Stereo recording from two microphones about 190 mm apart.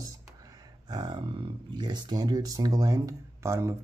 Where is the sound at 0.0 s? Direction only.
20° right (ahead or behind).